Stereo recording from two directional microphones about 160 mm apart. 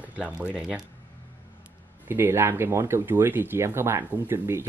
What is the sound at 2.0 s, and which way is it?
Speech, 15° right (ahead or behind).